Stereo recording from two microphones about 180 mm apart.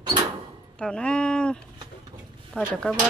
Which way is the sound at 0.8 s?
5° left (ahead or behind).